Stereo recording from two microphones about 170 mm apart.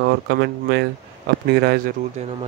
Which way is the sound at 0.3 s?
80° right.